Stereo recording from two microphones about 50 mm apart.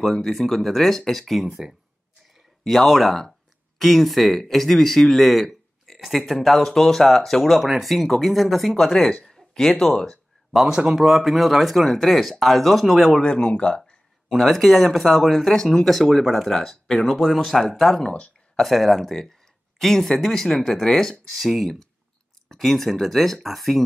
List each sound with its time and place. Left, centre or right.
0.0 s speech: centre
10.5 s speech: centre
13.2 s speech: left
14.3 s speech: centre
17.0 s speech: centre